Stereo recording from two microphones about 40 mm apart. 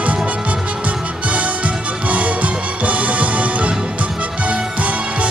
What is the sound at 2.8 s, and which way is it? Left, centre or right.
Music, right.